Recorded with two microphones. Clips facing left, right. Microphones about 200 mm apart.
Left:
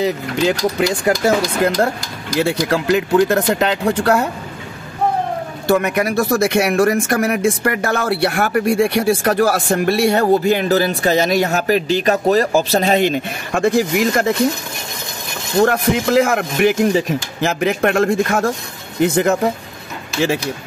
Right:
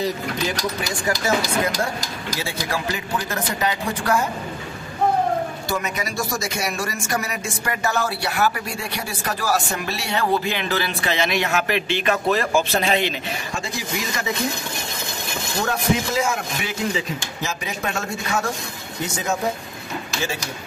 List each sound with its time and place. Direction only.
0.5 s speech: 70° left (ahead or behind)
5.7 s speech: 60° left (ahead or behind)
9.2 s speech: 55° left (ahead or behind)
15.6 s speech: 70° left (ahead or behind)